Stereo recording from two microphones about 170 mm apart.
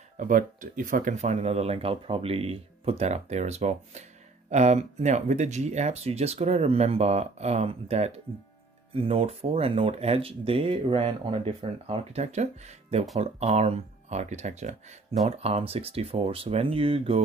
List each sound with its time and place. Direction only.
0.2 s speech: 50° right (ahead or behind); by 17.2 s 35° right (ahead or behind)